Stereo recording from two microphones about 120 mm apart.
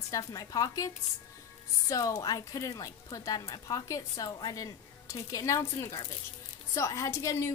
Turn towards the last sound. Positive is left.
turn(degrees=25)  # may be behind; listen again after turning